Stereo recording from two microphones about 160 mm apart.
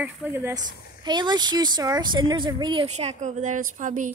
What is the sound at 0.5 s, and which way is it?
Speech, 25° right (ahead or behind).